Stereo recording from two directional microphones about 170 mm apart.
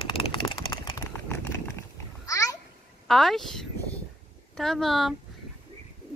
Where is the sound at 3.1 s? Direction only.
Centre (ahead or behind).